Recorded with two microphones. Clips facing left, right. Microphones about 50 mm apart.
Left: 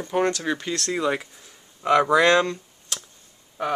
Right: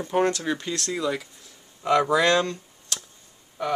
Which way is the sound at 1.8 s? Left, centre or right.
Left.